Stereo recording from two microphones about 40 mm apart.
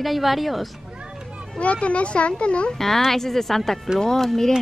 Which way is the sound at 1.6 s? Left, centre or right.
Left.